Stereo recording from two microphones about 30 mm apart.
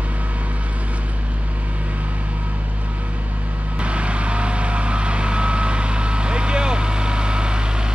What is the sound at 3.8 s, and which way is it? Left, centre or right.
Vehicle, right.